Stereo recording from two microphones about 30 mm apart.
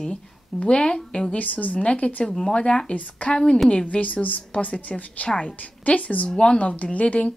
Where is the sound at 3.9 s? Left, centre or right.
Left.